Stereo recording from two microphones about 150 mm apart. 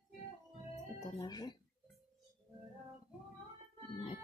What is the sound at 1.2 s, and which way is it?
Speech, 30° left (ahead or behind).